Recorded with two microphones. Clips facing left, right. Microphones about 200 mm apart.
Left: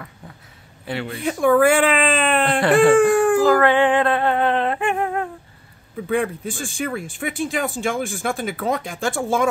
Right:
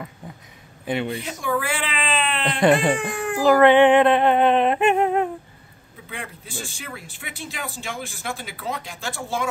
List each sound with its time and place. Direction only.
0.8 s speech: 20° right (ahead or behind)
1.2 s speech: 55° left (ahead or behind)
2.6 s speech: 20° right (ahead or behind)
3.0 s speech: 50° left (ahead or behind)
3.4 s a sound: 20° right (ahead or behind)
6.0 s speech: 50° left (ahead or behind)